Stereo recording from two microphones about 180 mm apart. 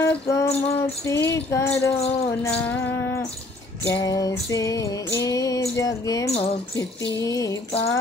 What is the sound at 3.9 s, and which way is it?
Music, 20° left (ahead or behind).